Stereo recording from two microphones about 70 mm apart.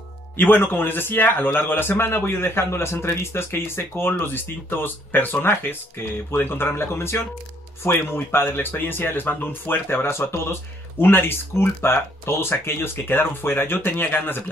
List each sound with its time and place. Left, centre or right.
0.4 s a man's voice: left